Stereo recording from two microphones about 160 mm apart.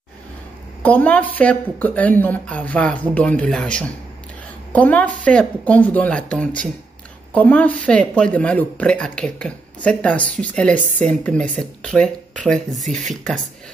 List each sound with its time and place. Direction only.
0.8 s speech: 10° left (ahead or behind)
12.8 s speech: 50° right (ahead or behind)
13.1 s speech: 5° left (ahead or behind)